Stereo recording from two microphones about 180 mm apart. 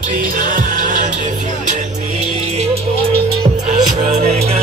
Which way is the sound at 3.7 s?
40° right (ahead or behind).